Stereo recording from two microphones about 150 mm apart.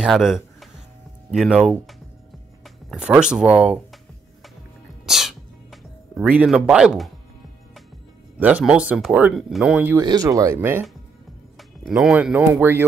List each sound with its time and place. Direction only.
0.0 s speech: 5° right (ahead or behind)
2.6 s music: 5° right (ahead or behind)
8.4 s speech: 10° right (ahead or behind)
10.0 s speech: 25° right (ahead or behind)
11.9 s speech: 5° right (ahead or behind)